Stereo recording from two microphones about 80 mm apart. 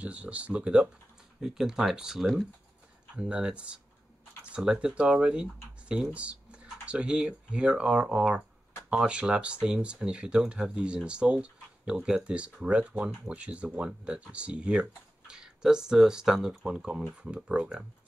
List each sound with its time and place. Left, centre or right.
0.0 s speech: centre